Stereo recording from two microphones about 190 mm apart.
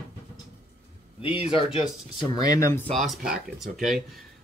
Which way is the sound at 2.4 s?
15° left (ahead or behind).